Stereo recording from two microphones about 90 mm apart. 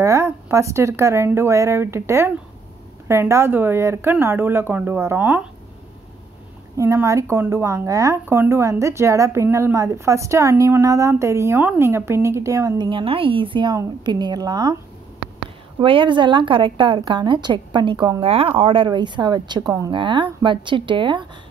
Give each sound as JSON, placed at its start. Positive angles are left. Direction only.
{"t": 0.0, "sound": "speech", "side_deg": -35}
{"t": 6.8, "sound": "speech", "side_deg": -35}
{"t": 12.7, "sound": "a woman's voice", "side_deg": -65}
{"t": 14.0, "sound": "a woman's voice", "side_deg": -55}
{"t": 15.8, "sound": "a woman's voice", "side_deg": -70}
{"t": 18.2, "sound": "speech", "side_deg": -90}
{"t": 18.6, "sound": "a woman's voice", "side_deg": -70}